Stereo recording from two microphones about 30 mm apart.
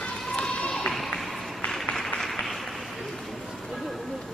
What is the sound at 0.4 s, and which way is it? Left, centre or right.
Run, left.